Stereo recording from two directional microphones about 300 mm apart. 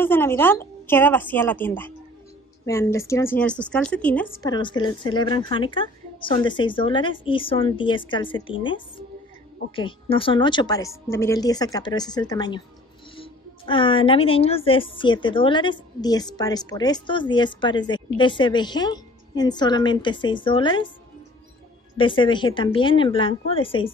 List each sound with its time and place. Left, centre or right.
0.0 s a woman's voice: centre
21.9 s a woman's voice: centre